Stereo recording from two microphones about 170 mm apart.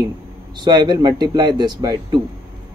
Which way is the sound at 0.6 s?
25° right (ahead or behind).